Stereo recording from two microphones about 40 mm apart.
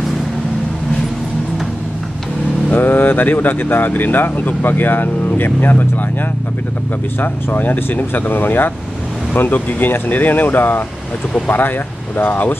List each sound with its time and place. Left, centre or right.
2.7 s speech: left
7.2 s speech: left
12.2 s speech: left